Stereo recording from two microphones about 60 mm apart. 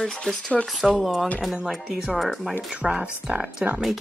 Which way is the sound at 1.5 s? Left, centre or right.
Centre.